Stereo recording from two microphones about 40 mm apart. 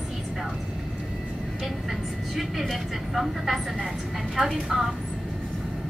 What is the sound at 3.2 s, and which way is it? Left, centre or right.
A woman's voice, centre.